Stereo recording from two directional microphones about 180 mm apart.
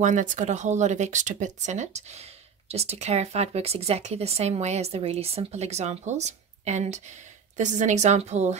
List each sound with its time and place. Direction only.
0.0 s speech: 45° right (ahead or behind)